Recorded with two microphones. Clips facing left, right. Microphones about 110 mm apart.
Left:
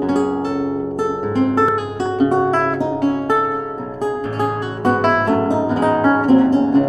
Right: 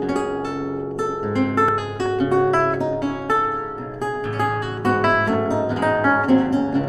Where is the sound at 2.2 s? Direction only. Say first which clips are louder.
Left 2 dB; 30° left (ahead or behind).